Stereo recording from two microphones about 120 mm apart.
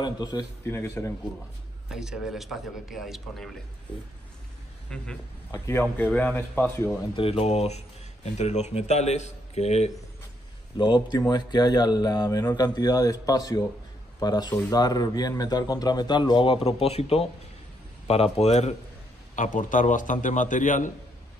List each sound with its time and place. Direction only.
0.0 s speech: 35° left (ahead or behind)
0.7 s speech: 20° left (ahead or behind)
1.9 s a man's voice: 5° right (ahead or behind)
4.8 s a man's voice: 10° left (ahead or behind)
5.5 s a man's voice: 20° left (ahead or behind)
7.2 s speech: 55° left (ahead or behind)
10.8 s speech: 40° left (ahead or behind); by 18.8 s 70° left (ahead or behind)
19.3 s a man's voice: 90° left